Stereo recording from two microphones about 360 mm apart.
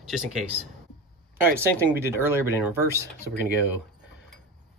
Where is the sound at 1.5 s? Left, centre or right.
Centre.